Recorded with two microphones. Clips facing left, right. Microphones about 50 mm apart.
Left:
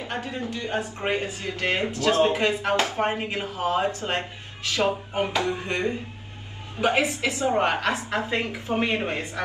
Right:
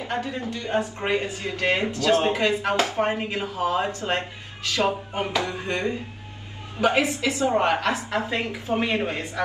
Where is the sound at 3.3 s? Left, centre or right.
Left.